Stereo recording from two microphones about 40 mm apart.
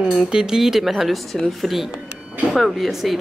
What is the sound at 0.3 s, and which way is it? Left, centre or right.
Speech, centre.